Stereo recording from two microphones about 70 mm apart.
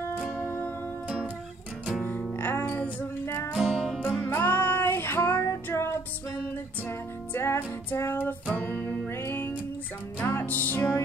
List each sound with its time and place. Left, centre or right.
1.0 s music: right
2.3 s music: left
2.7 s music: centre
3.5 s music: centre
4.2 s music: left